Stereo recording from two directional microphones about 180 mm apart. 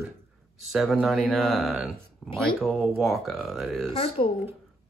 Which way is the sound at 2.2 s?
5° left (ahead or behind).